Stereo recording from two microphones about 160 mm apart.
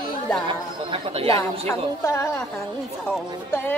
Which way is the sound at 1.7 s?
15° left (ahead or behind).